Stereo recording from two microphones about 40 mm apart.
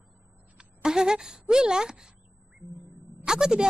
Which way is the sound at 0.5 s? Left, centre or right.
Centre.